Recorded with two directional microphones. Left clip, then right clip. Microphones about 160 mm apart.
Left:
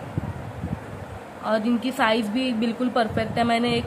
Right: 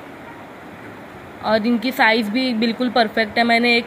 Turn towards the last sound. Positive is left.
turn(degrees=-20)  # may be behind; listen again after turning